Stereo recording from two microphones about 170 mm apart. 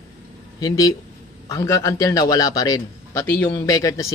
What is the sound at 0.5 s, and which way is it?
A man's voice, 20° left (ahead or behind).